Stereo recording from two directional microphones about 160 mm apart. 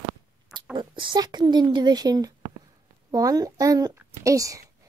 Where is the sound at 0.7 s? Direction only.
30° right (ahead or behind).